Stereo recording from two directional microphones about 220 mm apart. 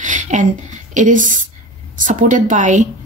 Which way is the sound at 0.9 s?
35° right (ahead or behind).